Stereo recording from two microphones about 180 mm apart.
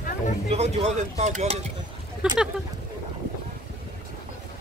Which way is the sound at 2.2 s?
5° right (ahead or behind).